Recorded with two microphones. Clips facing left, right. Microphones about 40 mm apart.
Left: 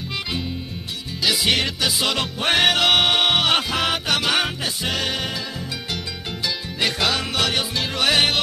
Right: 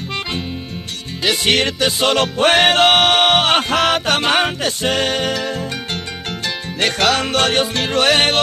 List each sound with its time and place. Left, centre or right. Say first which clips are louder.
1.2 s music: right 4 dB; right
2.1 s music: right 9 dB; right
2.5 s music: right 3 dB; right
3.7 s music: right 6 dB; right
6.4 s music: right 4 dB; right
8.0 s music: right 4 dB; right